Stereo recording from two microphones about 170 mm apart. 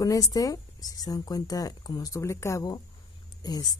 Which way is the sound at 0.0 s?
20° left (ahead or behind).